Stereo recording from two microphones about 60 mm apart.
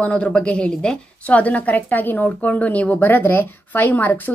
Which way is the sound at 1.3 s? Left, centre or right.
Left.